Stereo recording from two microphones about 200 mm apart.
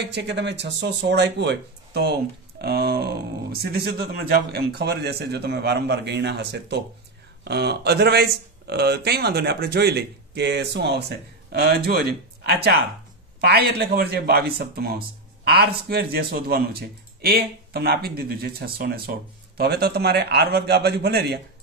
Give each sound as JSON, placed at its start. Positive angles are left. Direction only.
{"t": 0.0, "sound": "speech", "side_deg": -60}